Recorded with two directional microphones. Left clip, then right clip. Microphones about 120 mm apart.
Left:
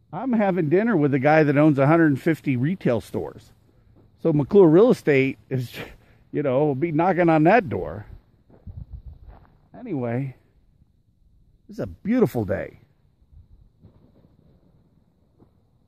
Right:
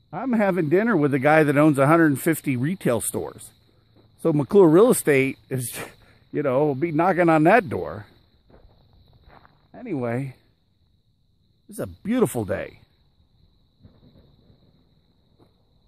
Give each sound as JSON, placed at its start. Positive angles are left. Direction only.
{"t": 0.1, "sound": "speech", "side_deg": -15}
{"t": 9.3, "sound": "a sound", "side_deg": 90}
{"t": 9.7, "sound": "speech", "side_deg": -15}
{"t": 11.6, "sound": "speech", "side_deg": 0}